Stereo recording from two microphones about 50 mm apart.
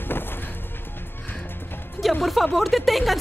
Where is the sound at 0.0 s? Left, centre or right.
Left.